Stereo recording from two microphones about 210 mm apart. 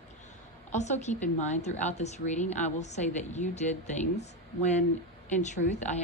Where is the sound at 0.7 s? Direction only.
35° left (ahead or behind).